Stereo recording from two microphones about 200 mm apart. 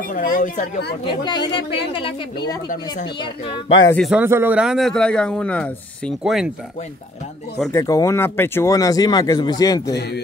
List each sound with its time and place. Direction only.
0.1 s speech: 40° left (ahead or behind)
1.2 s speech: 20° left (ahead or behind)
3.2 s speech: 25° left (ahead or behind)
3.9 s a man's voice: centre (ahead or behind)
4.2 s a man's voice: 10° right (ahead or behind)
7.7 s speech: 15° left (ahead or behind)